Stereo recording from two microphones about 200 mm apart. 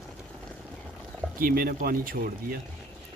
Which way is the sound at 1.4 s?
45° right (ahead or behind).